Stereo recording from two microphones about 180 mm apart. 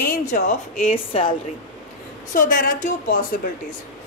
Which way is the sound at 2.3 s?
50° left (ahead or behind).